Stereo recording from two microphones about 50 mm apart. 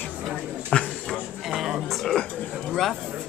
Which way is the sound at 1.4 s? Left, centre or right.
Centre.